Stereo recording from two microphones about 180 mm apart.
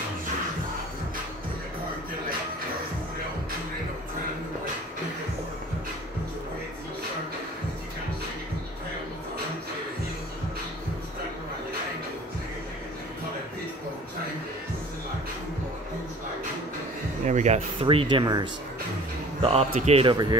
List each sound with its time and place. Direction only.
17.2 s a sound: 40° right (ahead or behind)
17.8 s speech: 30° right (ahead or behind)
19.4 s speech: 35° right (ahead or behind)